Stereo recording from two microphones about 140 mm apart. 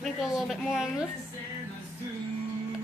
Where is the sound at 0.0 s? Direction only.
Centre (ahead or behind).